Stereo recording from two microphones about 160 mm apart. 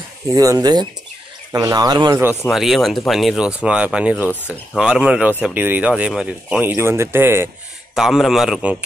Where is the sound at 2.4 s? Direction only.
Centre (ahead or behind).